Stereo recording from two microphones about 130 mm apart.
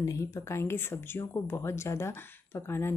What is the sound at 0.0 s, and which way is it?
Speech, 25° left (ahead or behind).